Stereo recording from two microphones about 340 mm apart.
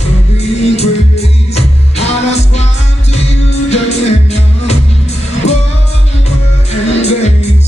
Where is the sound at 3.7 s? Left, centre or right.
Centre.